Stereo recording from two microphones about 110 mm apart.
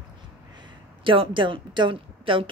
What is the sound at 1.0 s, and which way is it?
A woman's voice, 50° right (ahead or behind).